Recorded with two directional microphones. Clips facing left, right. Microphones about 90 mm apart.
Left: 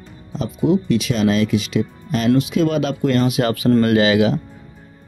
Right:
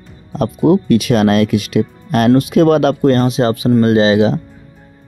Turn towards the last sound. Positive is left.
turn(degrees=-30)  # may be behind; listen again after turning